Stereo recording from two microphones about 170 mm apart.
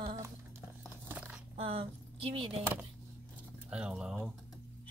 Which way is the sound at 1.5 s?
35° right (ahead or behind).